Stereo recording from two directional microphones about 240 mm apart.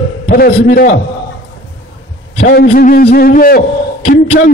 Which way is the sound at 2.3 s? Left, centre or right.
Left.